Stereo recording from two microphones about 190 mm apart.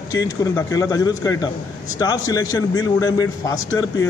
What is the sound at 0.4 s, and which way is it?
A man's voice, 15° left (ahead or behind).